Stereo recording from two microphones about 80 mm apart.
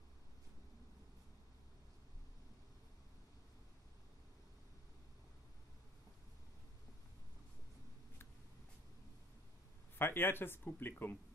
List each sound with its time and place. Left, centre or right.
9.9 s speech: left